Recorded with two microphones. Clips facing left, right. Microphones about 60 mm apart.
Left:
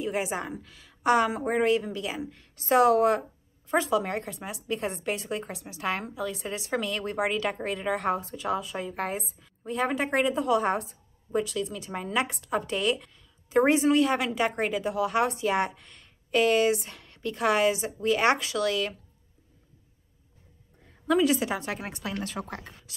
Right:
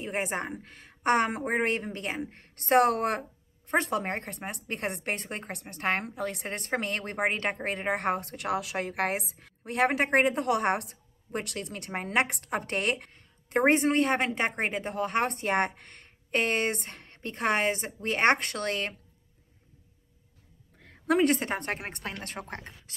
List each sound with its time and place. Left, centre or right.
0.0 s a woman's voice: right
20.8 s a woman's voice: right